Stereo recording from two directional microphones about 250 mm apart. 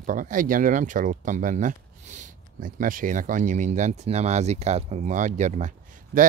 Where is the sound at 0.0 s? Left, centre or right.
Right.